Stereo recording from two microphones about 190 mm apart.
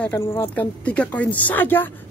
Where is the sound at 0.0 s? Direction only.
10° left (ahead or behind).